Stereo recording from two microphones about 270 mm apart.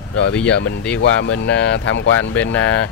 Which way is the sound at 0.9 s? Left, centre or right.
Left.